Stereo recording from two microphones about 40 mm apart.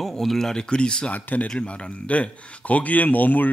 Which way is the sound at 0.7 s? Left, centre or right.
Left.